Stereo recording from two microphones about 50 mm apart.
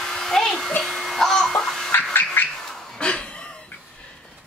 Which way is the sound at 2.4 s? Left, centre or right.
Left.